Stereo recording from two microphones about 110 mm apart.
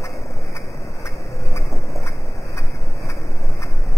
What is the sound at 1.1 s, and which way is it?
Tick-tock, centre (ahead or behind).